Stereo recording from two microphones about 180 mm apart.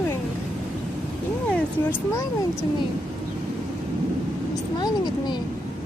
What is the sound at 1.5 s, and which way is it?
Speech, 10° left (ahead or behind).